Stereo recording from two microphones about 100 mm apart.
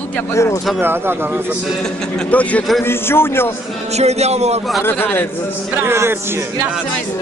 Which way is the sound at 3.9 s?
90° right.